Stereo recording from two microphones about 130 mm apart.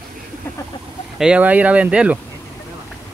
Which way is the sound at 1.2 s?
10° right (ahead or behind).